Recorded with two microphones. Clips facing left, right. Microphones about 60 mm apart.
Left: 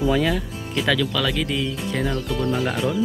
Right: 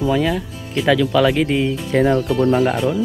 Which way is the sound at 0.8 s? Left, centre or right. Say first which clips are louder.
Right 8 dB; right.